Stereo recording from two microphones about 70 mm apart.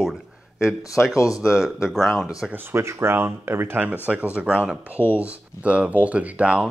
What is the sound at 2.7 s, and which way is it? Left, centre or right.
Speech, right.